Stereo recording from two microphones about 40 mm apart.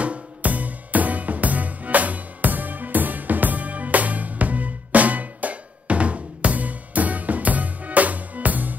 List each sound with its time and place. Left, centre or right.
0.0 s music: right